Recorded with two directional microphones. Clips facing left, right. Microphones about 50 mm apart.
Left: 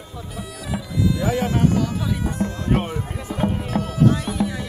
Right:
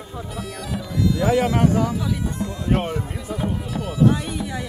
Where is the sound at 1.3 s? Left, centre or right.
Right.